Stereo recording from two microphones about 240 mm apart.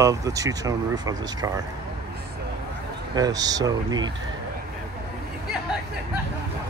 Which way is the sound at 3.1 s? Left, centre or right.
Centre.